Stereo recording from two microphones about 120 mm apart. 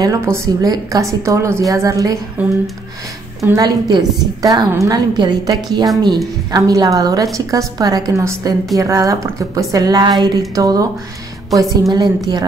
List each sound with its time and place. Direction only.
0.0 s a woman's voice: 25° right (ahead or behind)
2.4 s speech: 15° right (ahead or behind)
3.5 s a woman's voice: 30° right (ahead or behind)